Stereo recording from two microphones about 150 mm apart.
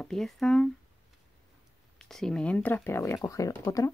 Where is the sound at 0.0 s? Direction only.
5° left (ahead or behind).